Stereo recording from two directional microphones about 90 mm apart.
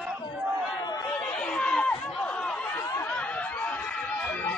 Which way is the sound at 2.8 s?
30° left (ahead or behind).